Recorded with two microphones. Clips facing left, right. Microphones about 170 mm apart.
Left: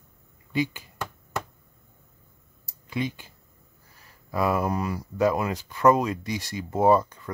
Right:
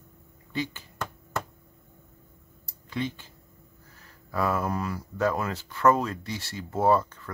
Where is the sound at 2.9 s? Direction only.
15° left (ahead or behind).